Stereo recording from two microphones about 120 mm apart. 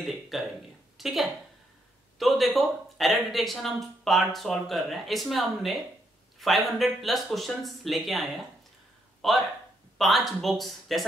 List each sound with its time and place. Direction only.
0.0 s a woman's voice: centre (ahead or behind)